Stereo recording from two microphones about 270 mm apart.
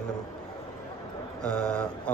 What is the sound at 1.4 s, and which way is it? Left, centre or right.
Speech, centre.